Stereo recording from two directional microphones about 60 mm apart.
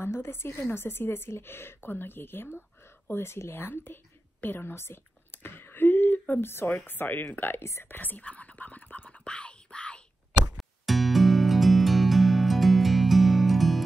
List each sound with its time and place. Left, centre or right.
0.0 s a woman's voice: left
3.1 s whispering: left
6.5 s a woman's voice: left
7.6 s speech: left
8.0 s whispering: left
10.6 s music: centre